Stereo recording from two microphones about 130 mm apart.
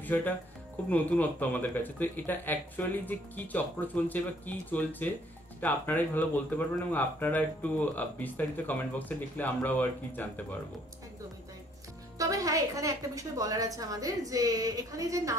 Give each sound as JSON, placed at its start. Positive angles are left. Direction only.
{"t": 0.0, "sound": "speech", "side_deg": 15}
{"t": 12.2, "sound": "a woman's voice", "side_deg": -25}